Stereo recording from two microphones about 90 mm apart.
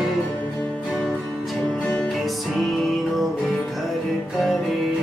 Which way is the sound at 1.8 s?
15° left (ahead or behind).